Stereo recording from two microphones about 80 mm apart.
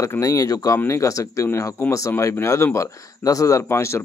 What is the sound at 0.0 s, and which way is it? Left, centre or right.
Speech, left.